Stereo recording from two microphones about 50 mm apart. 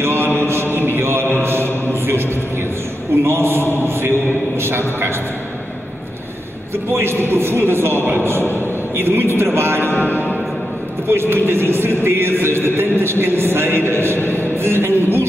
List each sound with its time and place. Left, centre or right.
0.0 s mantra: right
3.3 s a sound: right
3.8 s chant: right
4.6 s a sound: right
6.7 s music: right
9.4 s speech: right
10.0 s music: left
11.1 s music: right
14.3 s speech: right